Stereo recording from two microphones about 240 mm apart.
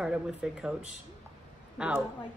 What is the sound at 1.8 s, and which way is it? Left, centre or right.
Speech, centre.